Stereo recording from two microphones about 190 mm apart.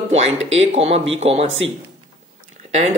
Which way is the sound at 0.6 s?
35° right (ahead or behind).